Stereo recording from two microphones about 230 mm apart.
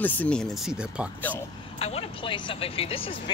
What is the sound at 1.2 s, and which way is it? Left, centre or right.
Speech, centre.